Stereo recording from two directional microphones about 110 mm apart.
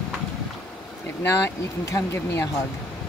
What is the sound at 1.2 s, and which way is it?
Speech, 25° left (ahead or behind).